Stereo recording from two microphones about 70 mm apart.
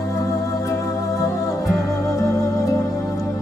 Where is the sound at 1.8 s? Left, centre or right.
Centre.